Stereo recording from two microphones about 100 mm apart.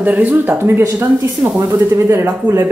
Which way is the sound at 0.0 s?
15° right (ahead or behind).